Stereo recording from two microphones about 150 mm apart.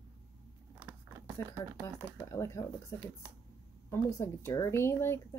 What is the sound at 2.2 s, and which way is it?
Speech, 20° left (ahead or behind).